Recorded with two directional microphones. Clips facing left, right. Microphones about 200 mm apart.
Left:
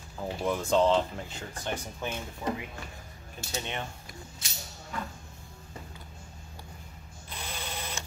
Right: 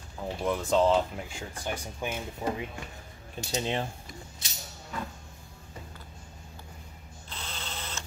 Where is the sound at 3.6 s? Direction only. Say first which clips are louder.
Right 8 dB; 30° right (ahead or behind).